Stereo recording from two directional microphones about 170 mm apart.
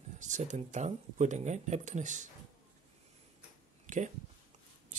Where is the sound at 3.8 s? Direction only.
45° right (ahead or behind).